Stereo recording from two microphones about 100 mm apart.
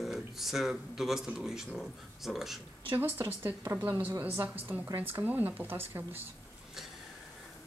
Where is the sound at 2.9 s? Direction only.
20° right (ahead or behind).